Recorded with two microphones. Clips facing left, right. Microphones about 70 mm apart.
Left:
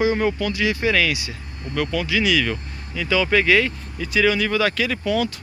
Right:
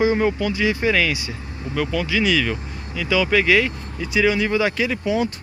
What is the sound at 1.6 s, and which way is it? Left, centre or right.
Speech, centre.